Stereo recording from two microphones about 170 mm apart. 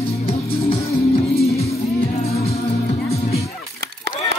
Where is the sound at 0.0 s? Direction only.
35° left (ahead or behind).